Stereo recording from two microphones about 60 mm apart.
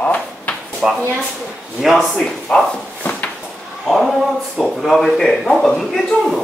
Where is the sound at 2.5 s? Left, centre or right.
Centre.